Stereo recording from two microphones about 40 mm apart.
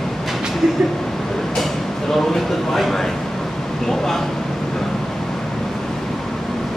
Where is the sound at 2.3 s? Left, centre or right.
Centre.